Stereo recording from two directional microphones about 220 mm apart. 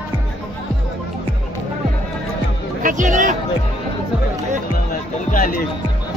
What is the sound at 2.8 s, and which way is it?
Music, 35° right (ahead or behind).